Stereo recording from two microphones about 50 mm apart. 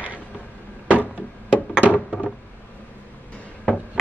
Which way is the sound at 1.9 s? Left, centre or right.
Left.